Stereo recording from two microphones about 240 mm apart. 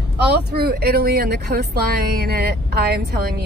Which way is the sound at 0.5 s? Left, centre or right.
Right.